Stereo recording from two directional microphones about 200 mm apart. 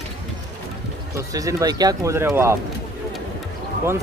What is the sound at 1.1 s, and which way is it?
Speech, 15° right (ahead or behind).